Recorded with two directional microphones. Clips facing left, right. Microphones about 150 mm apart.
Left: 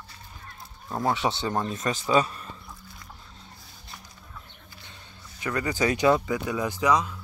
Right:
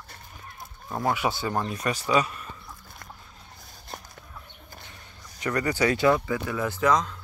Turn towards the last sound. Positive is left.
turn(degrees=10)  # may be behind; listen again after turning